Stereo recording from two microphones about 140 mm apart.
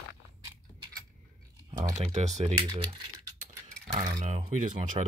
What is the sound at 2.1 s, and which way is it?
Speech, 55° right (ahead or behind).